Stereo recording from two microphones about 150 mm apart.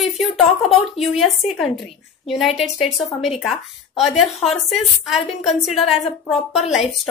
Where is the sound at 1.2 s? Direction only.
Centre (ahead or behind).